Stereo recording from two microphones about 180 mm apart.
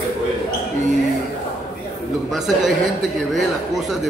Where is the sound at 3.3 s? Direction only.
Centre (ahead or behind).